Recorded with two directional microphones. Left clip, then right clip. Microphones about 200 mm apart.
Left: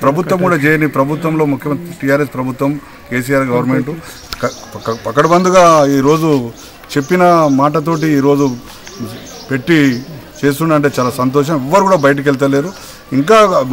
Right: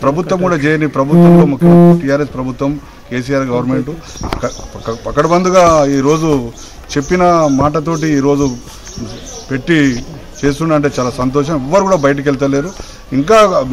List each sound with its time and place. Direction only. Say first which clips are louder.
0.0 s a man's voice: left 1 dB; 10° left (ahead or behind)
2.0 s a man's voice: left 1 dB; 15° left (ahead or behind)
9.5 s a man's voice: left 1 dB; 10° left (ahead or behind)